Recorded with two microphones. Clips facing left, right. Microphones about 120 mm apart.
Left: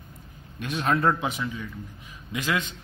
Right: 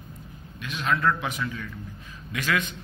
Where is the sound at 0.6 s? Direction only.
40° left (ahead or behind); by 2.7 s 25° left (ahead or behind).